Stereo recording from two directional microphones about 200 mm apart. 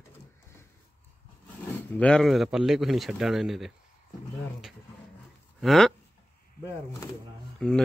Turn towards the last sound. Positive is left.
turn(degrees=5)  # may be behind; listen again after turning